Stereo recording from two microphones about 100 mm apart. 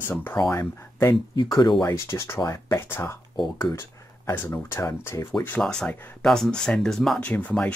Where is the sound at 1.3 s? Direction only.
50° left (ahead or behind).